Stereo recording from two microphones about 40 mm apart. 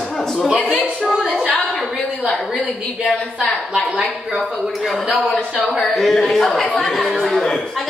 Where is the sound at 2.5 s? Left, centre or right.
Centre.